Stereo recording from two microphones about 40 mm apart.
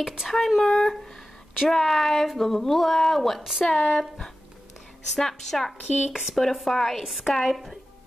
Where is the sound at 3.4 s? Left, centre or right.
Centre.